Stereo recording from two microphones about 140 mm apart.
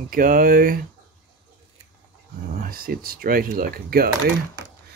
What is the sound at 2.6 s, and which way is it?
Speech, 90° right.